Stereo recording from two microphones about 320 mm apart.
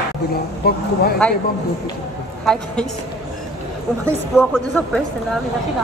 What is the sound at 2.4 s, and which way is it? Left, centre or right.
Speech, centre.